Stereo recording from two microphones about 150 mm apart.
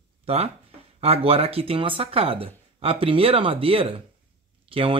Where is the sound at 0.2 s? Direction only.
40° right (ahead or behind).